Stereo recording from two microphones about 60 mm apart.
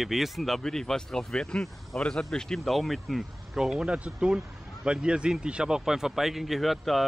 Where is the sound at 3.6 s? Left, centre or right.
Centre.